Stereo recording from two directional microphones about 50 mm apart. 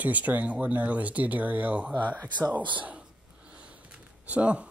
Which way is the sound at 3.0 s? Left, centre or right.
Right.